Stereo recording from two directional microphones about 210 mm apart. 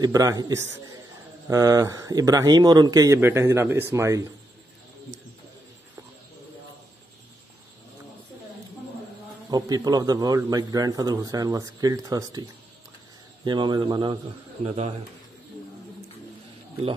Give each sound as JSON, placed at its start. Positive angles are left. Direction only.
{"t": 0.0, "sound": "a man's voice", "side_deg": -15}
{"t": 9.5, "sound": "a man's voice", "side_deg": -20}